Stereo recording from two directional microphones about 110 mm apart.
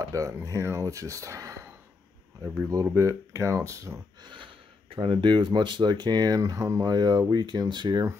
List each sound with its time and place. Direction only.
0.1 s speech: 30° right (ahead or behind)
4.2 s speech: 50° right (ahead or behind)